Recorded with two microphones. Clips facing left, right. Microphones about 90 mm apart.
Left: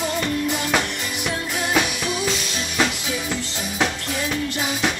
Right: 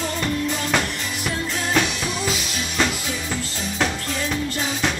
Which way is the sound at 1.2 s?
5° left (ahead or behind).